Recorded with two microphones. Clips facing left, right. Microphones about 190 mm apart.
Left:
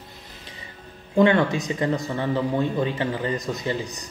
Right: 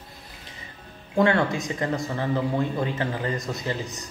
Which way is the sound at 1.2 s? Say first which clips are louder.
Left 3 dB; 20° left (ahead or behind).